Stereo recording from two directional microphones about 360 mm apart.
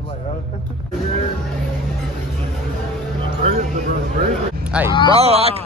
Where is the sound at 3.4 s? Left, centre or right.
Centre.